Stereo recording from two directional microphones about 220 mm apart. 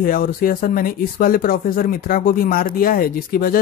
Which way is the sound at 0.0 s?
40° left (ahead or behind).